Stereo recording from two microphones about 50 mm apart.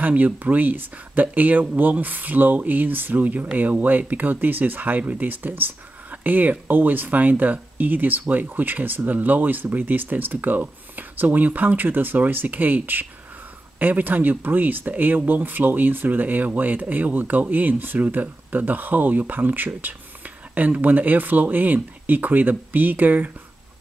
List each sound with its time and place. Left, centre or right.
0.0 s speech: right